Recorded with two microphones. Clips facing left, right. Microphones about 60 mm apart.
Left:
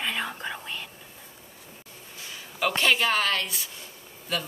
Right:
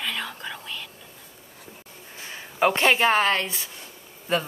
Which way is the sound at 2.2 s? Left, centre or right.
Right.